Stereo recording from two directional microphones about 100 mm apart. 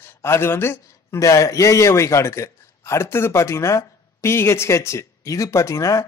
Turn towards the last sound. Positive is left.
turn(degrees=30)  # may be behind; listen again after turning